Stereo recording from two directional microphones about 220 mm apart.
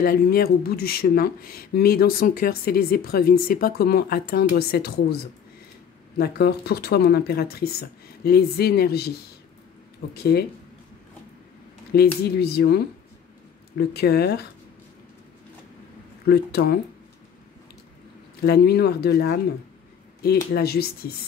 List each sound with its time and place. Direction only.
0.0 s speech: 45° left (ahead or behind)
10.1 s speech: 45° left (ahead or behind)
12.2 s speech: 45° left (ahead or behind)
16.3 s speech: 45° left (ahead or behind)
18.4 s speech: 45° left (ahead or behind)
20.5 s speech: 45° left (ahead or behind)